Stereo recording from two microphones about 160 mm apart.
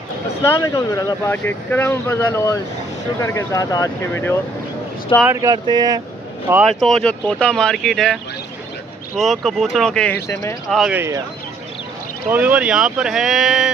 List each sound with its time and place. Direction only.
0.4 s speech: 20° left (ahead or behind)
5.2 s speech: 20° right (ahead or behind)
6.5 s speech: centre (ahead or behind)
9.2 s speech: centre (ahead or behind); by 10.5 s 15° left (ahead or behind)
10.7 s speech: centre (ahead or behind)
11.0 s speech: 20° right (ahead or behind)
12.3 s speech: 10° right (ahead or behind)